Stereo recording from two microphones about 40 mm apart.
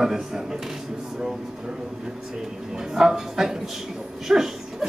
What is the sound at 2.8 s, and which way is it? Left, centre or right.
Speech, centre.